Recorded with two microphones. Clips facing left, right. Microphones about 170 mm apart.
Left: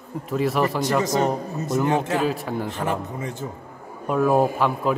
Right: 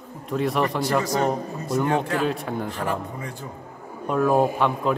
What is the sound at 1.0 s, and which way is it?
A man's voice, 20° left (ahead or behind).